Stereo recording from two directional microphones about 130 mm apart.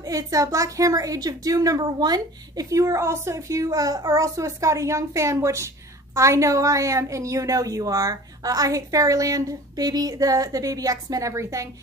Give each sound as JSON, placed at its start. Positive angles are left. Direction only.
{"t": 0.0, "sound": "a woman's voice", "side_deg": -25}